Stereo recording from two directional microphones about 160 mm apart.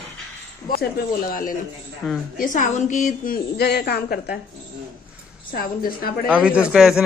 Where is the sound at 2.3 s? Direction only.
55° left (ahead or behind).